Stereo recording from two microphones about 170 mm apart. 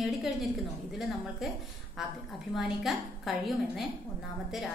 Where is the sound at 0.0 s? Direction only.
Centre (ahead or behind).